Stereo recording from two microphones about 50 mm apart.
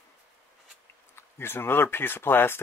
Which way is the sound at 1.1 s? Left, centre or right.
Left.